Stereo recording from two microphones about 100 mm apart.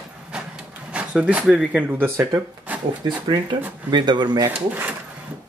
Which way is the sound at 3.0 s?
45° right (ahead or behind).